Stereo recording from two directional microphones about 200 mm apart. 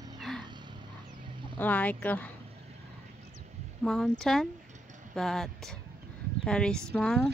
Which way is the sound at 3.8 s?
Centre (ahead or behind).